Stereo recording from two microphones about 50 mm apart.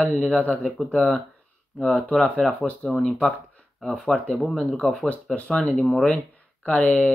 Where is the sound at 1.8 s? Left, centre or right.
Centre.